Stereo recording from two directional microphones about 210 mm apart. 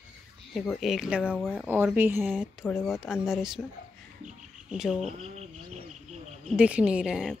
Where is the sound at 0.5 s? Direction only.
Centre (ahead or behind).